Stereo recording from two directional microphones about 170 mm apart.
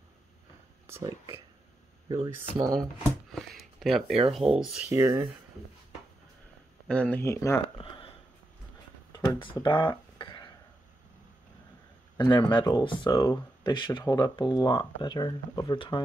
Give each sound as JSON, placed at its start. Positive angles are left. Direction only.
{"t": 0.8, "sound": "speech", "side_deg": -15}
{"t": 2.7, "sound": "speech", "side_deg": 0}
{"t": 4.9, "sound": "speech", "side_deg": -15}
{"t": 6.9, "sound": "speech", "side_deg": 10}
{"t": 7.7, "sound": "a sound", "side_deg": 30}
{"t": 9.1, "sound": "a sound", "side_deg": 25}
{"t": 12.2, "sound": "speech", "side_deg": 25}